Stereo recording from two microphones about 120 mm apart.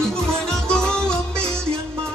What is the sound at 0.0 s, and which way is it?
Music, 5° left (ahead or behind).